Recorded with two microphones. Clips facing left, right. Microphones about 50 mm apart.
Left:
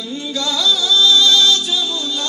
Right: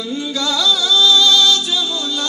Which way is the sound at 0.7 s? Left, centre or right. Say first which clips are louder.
Even; right.